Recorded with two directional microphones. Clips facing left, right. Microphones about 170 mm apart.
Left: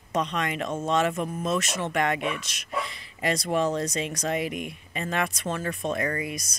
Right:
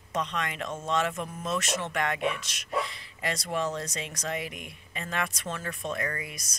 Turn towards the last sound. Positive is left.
turn(degrees=20)  # may be behind; listen again after turning